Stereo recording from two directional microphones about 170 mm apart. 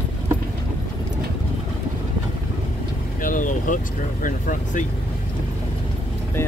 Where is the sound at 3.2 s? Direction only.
50° left (ahead or behind).